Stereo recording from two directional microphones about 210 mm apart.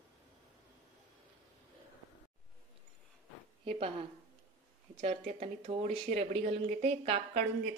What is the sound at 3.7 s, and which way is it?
Speech, 25° right (ahead or behind).